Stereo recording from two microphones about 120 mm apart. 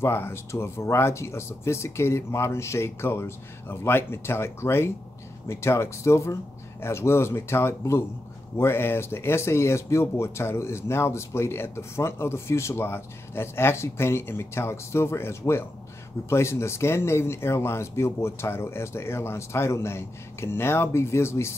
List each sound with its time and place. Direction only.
0.0 s speech: 20° left (ahead or behind)